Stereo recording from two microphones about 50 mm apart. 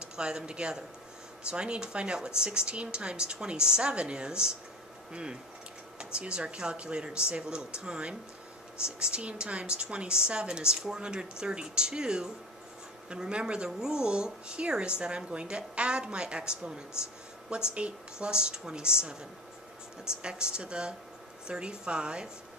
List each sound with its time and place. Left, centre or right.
0.1 s a woman's voice: centre
20.2 s a woman's voice: centre